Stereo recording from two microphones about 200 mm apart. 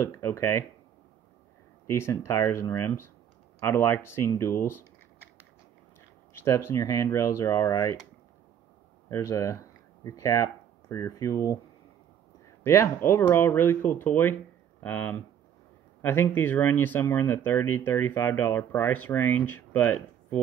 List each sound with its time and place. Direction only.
0.0 s speech: 15° left (ahead or behind)
1.9 s speech: 15° left (ahead or behind)
6.4 s speech: 15° left (ahead or behind)
9.1 s speech: 15° left (ahead or behind)
12.6 s speech: 15° left (ahead or behind)